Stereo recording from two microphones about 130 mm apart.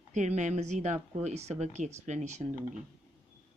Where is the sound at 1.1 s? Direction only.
55° right (ahead or behind).